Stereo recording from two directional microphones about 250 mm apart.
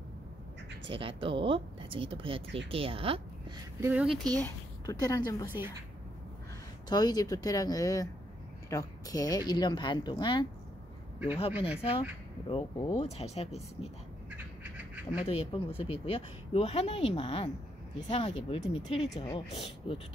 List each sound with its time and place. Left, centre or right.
0.8 s a woman's voice: right
3.8 s speech: centre
4.4 s speech: centre
6.9 s speech: centre
11.8 s speech: left
15.2 s speech: left